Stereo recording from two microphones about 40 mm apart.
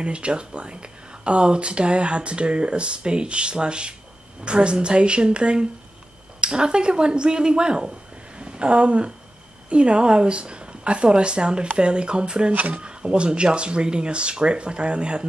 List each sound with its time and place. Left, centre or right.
0.0 s speech: right